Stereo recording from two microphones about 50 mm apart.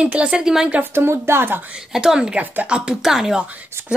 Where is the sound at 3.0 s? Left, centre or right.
Centre.